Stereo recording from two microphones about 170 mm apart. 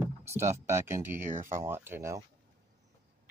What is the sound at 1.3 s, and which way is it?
Speech, 50° right (ahead or behind).